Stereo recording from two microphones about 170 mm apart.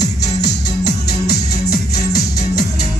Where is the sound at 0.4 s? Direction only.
75° left (ahead or behind).